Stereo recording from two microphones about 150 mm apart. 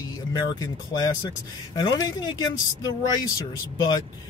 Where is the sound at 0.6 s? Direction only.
20° left (ahead or behind).